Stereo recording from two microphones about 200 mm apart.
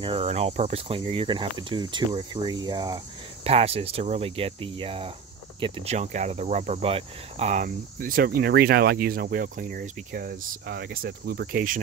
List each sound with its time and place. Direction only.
0.0 s cricket: 30° right (ahead or behind)